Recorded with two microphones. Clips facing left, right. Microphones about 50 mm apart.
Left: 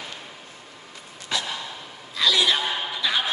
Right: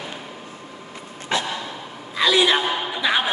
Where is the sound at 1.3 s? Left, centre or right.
Right.